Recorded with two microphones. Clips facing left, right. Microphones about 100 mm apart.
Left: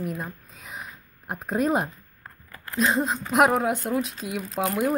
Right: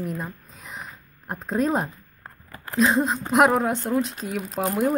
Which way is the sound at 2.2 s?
25° right (ahead or behind).